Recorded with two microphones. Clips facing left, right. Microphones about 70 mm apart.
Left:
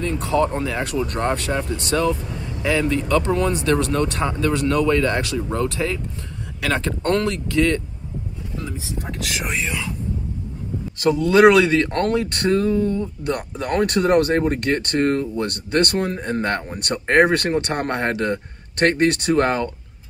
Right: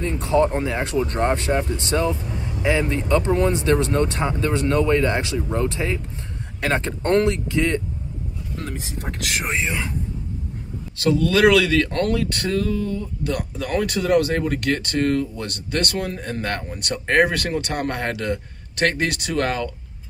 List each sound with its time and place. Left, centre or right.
0.0 s speech: right
8.5 s speech: right
9.5 s speech: right
11.1 s speech: left
13.7 s speech: left